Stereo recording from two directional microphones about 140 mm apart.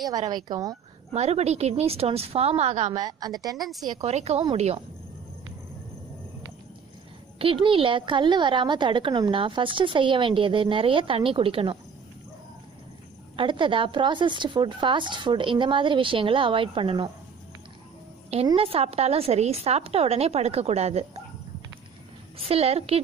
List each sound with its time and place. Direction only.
0.5 s a woman's voice: 25° right (ahead or behind)
1.1 s a woman's voice: 50° right (ahead or behind)
2.9 s a woman's voice: 30° right (ahead or behind)
3.5 s speech: centre (ahead or behind)
4.0 s a woman's voice: 50° right (ahead or behind)
7.3 s a woman's voice: 40° right (ahead or behind)
13.4 s a woman's voice: 35° right (ahead or behind)
18.6 s a woman's voice: 45° right (ahead or behind)
22.4 s a woman's voice: 45° right (ahead or behind)